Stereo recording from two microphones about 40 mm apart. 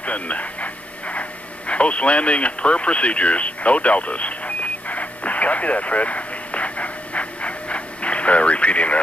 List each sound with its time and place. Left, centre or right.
0.0 s speech: left
1.7 s radio: left